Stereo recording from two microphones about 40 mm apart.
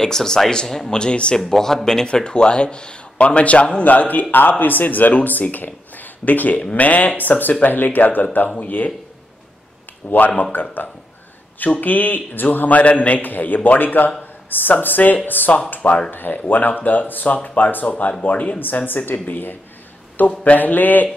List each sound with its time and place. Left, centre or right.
0.0 s speech: centre
1.5 s speech: centre
2.0 s speech: left
10.1 s speech: left
17.9 s speech: left
18.2 s speech: left
18.9 s speech: left
20.2 s speech: left